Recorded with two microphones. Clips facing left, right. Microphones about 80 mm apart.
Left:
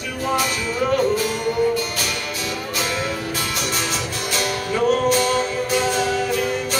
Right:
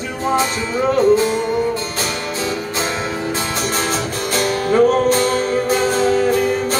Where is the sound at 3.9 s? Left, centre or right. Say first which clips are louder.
Right 5 dB; right.